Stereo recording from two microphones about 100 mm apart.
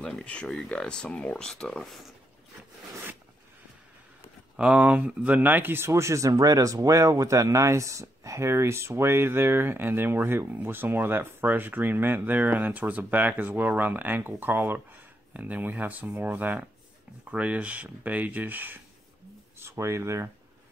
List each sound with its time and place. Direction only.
0.0 s speech: 10° left (ahead or behind)
4.6 s speech: 10° right (ahead or behind)
19.6 s speech: 30° right (ahead or behind)